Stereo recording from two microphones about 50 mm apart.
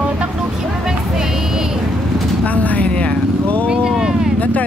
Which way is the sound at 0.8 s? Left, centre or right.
Centre.